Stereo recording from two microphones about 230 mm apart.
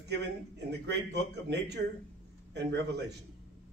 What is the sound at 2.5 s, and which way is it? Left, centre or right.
Speech, right.